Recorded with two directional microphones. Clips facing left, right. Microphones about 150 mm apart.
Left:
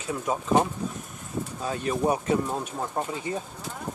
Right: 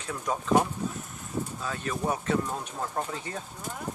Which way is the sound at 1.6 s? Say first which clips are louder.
Left 9 dB; 25° left (ahead or behind).